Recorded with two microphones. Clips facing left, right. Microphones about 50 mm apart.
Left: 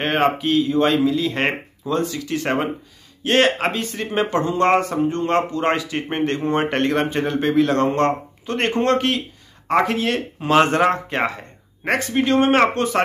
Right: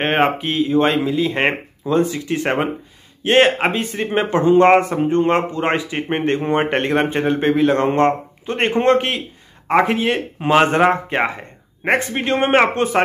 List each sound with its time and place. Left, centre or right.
0.0 s speech: right